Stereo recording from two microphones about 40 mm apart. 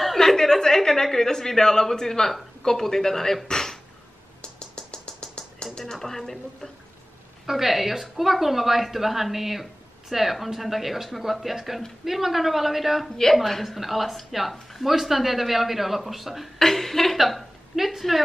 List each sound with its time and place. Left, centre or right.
0.2 s a woman's voice: centre
3.4 s a sound: centre
5.9 s speech: centre
7.4 s a woman's voice: centre
16.5 s a woman's voice: centre